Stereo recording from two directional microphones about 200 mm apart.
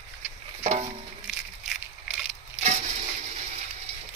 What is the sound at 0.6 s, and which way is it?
Music, 30° right (ahead or behind).